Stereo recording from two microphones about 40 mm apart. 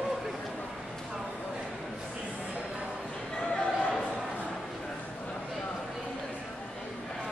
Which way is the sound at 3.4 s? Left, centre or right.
Left.